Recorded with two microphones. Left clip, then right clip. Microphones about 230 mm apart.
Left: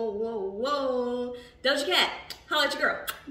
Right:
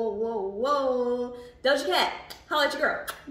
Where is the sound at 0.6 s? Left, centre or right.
Centre.